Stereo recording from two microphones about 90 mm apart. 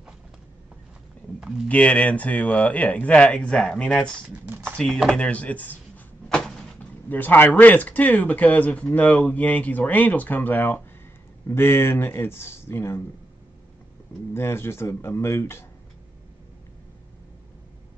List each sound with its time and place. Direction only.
1.7 s speech: 15° left (ahead or behind)
5.2 s speech: 15° left (ahead or behind)
6.2 s door: 5° left (ahead or behind)
7.1 s speech: 20° left (ahead or behind)
14.3 s speech: 25° left (ahead or behind)